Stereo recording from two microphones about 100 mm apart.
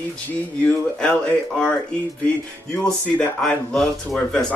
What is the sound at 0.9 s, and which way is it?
Speech, 10° left (ahead or behind).